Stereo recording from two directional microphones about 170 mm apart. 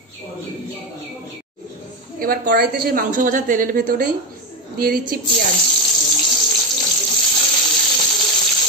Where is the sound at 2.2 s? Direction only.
60° right (ahead or behind).